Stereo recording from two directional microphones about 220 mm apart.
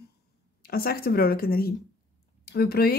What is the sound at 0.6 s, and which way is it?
Speech, 45° left (ahead or behind).